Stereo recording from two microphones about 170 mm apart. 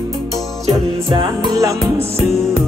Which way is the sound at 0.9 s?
30° right (ahead or behind).